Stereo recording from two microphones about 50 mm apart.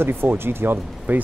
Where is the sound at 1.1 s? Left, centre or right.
Right.